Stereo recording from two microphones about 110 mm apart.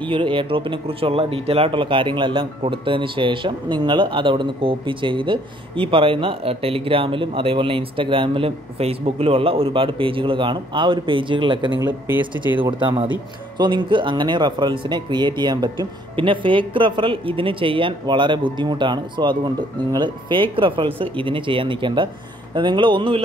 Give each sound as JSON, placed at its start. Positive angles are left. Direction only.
{"t": 0.1, "sound": "speech", "side_deg": -50}
{"t": 12.1, "sound": "speech", "side_deg": -15}
{"t": 12.7, "sound": "speech", "side_deg": -45}
{"t": 16.2, "sound": "speech", "side_deg": -50}